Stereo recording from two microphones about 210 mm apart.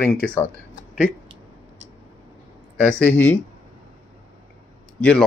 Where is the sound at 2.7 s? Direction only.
5° left (ahead or behind).